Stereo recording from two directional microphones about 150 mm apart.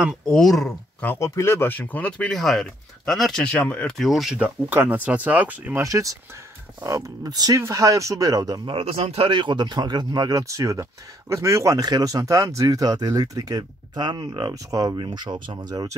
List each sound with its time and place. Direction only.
0.3 s speech: centre (ahead or behind)
1.2 s speech: 20° left (ahead or behind); by 4.5 s centre (ahead or behind)
4.6 s speech: 10° right (ahead or behind)
8.7 s speech: 40° right (ahead or behind); by 15.9 s 25° right (ahead or behind)